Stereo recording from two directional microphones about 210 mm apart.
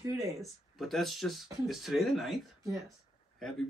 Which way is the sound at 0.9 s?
Centre (ahead or behind).